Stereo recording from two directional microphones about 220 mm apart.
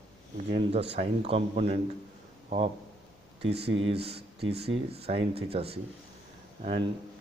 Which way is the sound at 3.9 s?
25° right (ahead or behind).